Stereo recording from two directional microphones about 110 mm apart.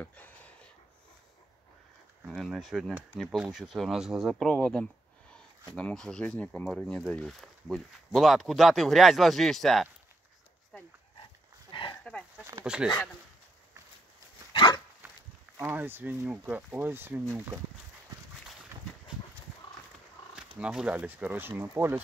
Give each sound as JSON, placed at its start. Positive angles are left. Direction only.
{"t": 0.0, "sound": "a sound", "side_deg": 15}
{"t": 2.2, "sound": "speech", "side_deg": -5}
{"t": 12.0, "sound": "dog", "side_deg": 10}
{"t": 12.6, "sound": "speech", "side_deg": -10}
{"t": 14.5, "sound": "dog", "side_deg": 45}
{"t": 15.6, "sound": "speech", "side_deg": -15}
{"t": 20.5, "sound": "speech", "side_deg": -10}